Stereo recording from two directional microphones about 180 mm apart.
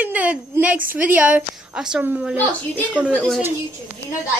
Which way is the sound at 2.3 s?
10° left (ahead or behind).